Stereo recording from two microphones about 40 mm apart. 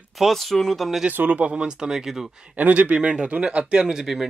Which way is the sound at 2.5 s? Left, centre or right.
Right.